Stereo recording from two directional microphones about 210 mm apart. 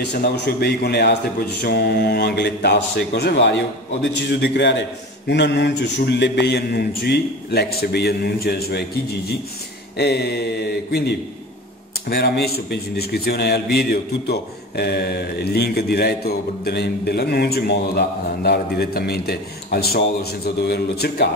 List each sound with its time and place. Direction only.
0.0 s a man's voice: 55° left (ahead or behind)
9.9 s a man's voice: 50° left (ahead or behind)